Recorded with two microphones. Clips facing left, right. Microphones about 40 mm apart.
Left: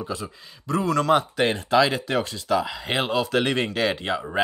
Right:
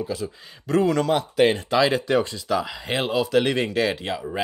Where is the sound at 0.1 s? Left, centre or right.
Centre.